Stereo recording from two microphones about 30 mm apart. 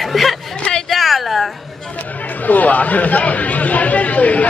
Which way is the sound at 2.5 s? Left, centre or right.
Left.